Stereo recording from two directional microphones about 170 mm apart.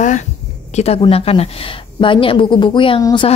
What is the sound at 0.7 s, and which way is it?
A woman's voice, 35° left (ahead or behind).